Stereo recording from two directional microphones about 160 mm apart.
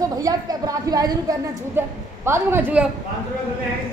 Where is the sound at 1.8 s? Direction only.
10° right (ahead or behind).